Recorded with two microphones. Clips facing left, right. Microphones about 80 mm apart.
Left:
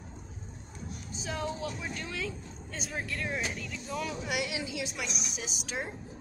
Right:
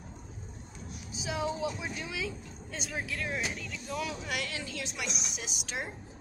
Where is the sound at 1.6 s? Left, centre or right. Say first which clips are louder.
Right 2 dB; centre.